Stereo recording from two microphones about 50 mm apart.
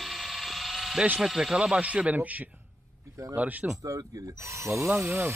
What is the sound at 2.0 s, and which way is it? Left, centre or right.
Speech, right.